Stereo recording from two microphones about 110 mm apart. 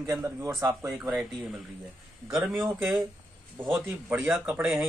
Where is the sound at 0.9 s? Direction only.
15° right (ahead or behind).